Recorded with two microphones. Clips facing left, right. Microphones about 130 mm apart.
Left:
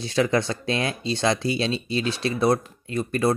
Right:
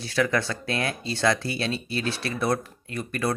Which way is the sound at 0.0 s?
20° left (ahead or behind).